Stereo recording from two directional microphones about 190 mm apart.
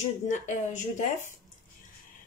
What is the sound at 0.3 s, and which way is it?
Speech, 40° left (ahead or behind).